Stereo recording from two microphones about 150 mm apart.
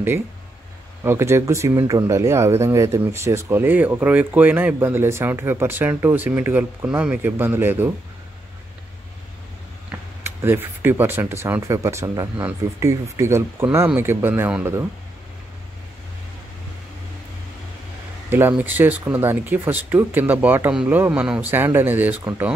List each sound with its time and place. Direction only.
1.0 s speech: 15° right (ahead or behind)
9.8 s speech: 15° right (ahead or behind)
18.3 s speech: 10° right (ahead or behind)